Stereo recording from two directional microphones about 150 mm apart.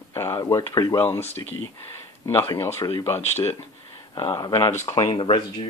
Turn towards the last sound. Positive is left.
turn(degrees=35)  # may be behind; listen again after turning